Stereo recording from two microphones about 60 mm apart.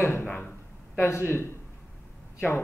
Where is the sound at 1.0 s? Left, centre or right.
Left.